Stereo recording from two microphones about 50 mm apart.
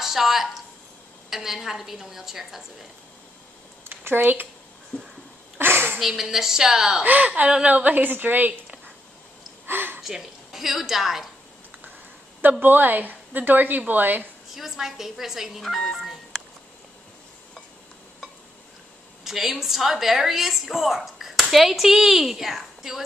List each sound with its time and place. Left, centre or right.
0.0 s a woman's voice: centre
3.8 s a sound: right
4.2 s a woman's voice: right
5.6 s a sound: right
5.9 s a woman's voice: centre
7.1 s a woman's voice: right
9.7 s a sound: right
10.0 s a woman's voice: centre
12.4 s a woman's voice: right
14.5 s a woman's voice: centre
19.2 s a woman's voice: centre